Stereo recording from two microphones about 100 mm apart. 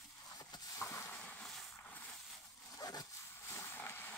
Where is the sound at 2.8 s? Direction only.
40° left (ahead or behind).